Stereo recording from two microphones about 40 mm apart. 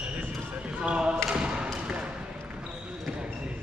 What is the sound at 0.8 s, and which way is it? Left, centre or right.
Basketball bounce, right.